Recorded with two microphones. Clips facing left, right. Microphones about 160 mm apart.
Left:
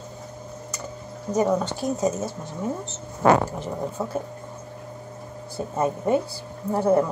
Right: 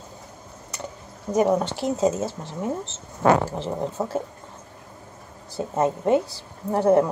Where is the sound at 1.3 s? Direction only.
20° right (ahead or behind).